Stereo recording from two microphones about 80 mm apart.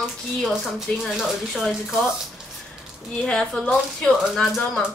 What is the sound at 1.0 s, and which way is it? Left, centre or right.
Speech, centre.